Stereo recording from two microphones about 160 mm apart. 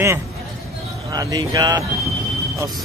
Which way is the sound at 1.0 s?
20° right (ahead or behind).